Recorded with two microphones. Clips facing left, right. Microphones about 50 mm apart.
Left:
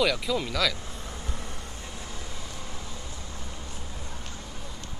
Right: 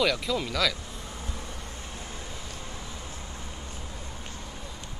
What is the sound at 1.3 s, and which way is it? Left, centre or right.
Vehicle, left.